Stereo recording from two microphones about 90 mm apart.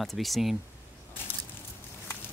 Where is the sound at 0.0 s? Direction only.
Centre (ahead or behind).